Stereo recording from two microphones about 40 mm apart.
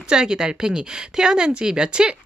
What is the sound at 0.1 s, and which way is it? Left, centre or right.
Speech, centre.